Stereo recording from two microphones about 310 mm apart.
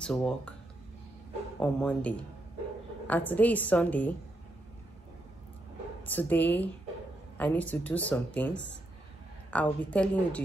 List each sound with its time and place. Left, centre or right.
0.0 s a woman's voice: centre
1.6 s a woman's voice: centre
6.0 s a woman's voice: centre